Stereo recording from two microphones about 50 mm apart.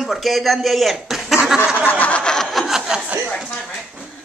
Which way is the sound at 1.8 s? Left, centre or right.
Left.